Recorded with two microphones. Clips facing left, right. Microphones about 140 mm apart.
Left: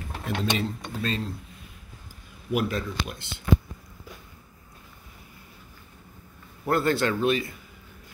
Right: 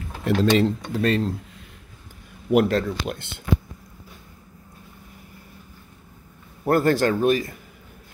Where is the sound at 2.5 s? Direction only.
60° right (ahead or behind).